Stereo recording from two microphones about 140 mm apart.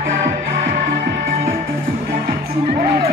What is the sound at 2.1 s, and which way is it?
Music, 90° right.